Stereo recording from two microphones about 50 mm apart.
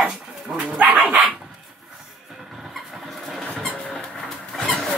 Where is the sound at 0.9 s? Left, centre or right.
Centre.